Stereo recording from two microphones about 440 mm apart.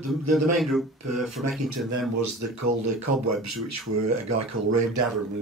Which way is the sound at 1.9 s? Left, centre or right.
Right.